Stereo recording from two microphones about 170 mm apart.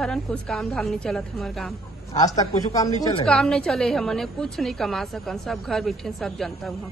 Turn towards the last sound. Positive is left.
turn(degrees=0)  # may be behind; listen again after turning